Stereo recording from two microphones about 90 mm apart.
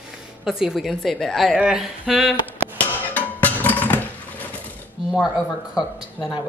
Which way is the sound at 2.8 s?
15° left (ahead or behind).